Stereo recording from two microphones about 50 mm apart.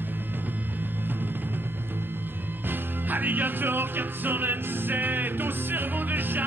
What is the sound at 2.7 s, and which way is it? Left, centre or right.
Music, right.